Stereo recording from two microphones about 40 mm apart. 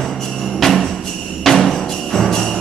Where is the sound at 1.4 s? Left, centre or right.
Centre.